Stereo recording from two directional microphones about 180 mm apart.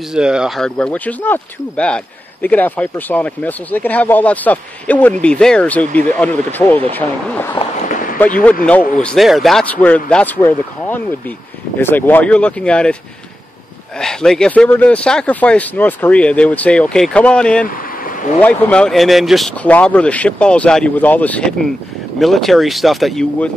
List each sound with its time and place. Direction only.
0.0 s speech: 5° right (ahead or behind)
7.8 s run: 45° left (ahead or behind)
9.0 s speech: centre (ahead or behind)
13.9 s speech: 5° left (ahead or behind)
17.6 s a sound: 50° left (ahead or behind)
18.4 s speech: 10° left (ahead or behind)